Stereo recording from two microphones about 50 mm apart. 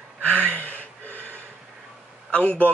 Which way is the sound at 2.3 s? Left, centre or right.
Left.